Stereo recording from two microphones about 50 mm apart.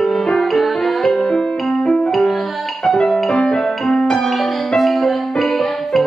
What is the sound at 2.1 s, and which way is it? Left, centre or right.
Music, centre.